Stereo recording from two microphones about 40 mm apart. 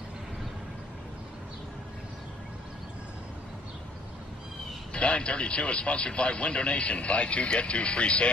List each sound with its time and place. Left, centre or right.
4.9 s speech: left